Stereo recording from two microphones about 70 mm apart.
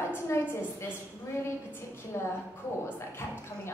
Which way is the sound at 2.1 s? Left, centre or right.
Left.